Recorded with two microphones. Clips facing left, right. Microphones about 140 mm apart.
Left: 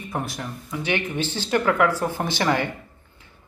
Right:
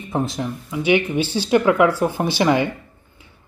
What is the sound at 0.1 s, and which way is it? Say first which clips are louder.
Speech: right 7 dB; 25° right (ahead or behind).